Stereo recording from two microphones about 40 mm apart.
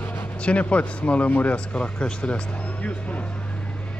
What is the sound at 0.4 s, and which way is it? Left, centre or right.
Speech, left.